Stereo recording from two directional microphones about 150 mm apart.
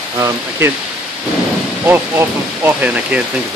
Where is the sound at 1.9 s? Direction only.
15° right (ahead or behind).